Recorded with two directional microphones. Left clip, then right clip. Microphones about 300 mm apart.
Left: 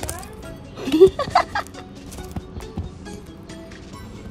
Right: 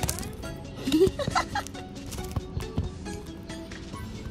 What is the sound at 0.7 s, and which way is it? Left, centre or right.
Music, left.